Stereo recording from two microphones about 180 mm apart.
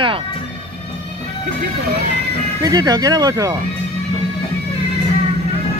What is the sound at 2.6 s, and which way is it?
Speech, 20° right (ahead or behind).